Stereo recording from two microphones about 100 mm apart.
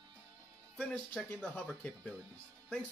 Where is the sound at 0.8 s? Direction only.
10° left (ahead or behind).